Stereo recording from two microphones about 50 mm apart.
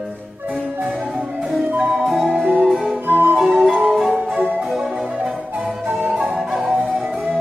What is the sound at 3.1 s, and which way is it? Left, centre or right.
Music, right.